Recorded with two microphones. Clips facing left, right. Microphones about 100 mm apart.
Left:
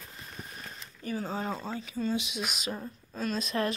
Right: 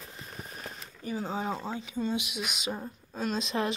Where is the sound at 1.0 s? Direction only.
15° right (ahead or behind).